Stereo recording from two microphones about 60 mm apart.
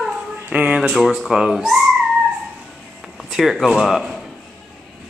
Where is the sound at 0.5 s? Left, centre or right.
Right.